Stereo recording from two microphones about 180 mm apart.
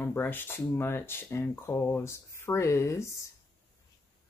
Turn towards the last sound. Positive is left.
turn(degrees=15)  # may be behind; listen again after turning